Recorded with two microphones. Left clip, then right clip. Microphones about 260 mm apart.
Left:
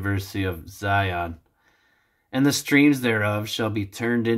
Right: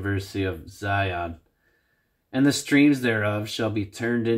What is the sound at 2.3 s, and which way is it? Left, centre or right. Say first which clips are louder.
Speech: left 1 dB; left.